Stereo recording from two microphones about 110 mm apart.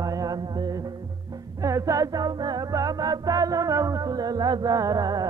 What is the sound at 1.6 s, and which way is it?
Music, 30° right (ahead or behind).